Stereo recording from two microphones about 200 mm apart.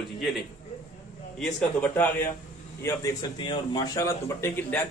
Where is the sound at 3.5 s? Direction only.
20° left (ahead or behind).